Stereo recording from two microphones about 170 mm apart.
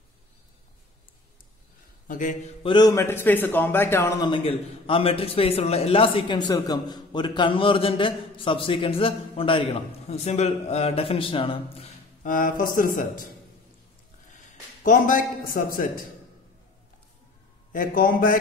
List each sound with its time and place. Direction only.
2.0 s a man's voice: 50° left (ahead or behind)
2.6 s a man's voice: 25° left (ahead or behind)
4.3 s a man's voice: 30° left (ahead or behind)
12.2 s speech: 50° left (ahead or behind)
14.3 s a man's voice: 50° left (ahead or behind)
17.7 s speech: 55° left (ahead or behind)